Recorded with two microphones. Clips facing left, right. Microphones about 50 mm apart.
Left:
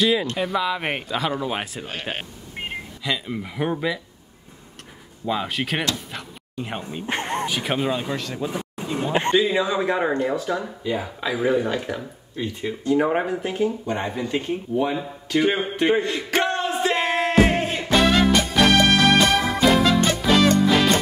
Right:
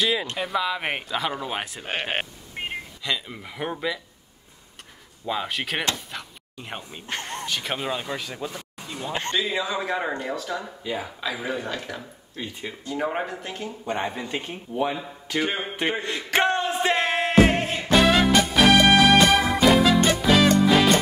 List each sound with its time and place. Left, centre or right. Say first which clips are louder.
0.0 s speech: left 4 dB; centre
5.2 s speech: left 3 dB; centre
7.1 s speech: left 6 dB; left
7.4 s speech: left 5 dB; centre
8.5 s speech: left 8 dB; centre
10.8 s speech: left 4 dB; centre
12.4 s speech: left 6 dB; centre
12.8 s speech: left 7 dB; centre
13.8 s speech: left 2 dB; centre
15.3 s speech: left 6 dB; centre
15.6 s speech: left 5 dB; centre
16.3 s music: right 1 dB; centre
16.9 s music: even; centre